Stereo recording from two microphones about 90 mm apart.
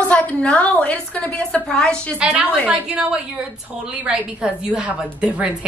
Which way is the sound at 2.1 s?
15° right (ahead or behind).